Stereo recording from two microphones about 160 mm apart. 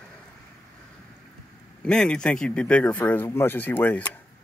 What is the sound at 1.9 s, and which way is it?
Speech, 5° left (ahead or behind).